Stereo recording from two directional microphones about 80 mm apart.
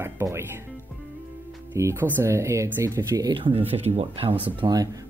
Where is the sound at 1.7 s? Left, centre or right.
Right.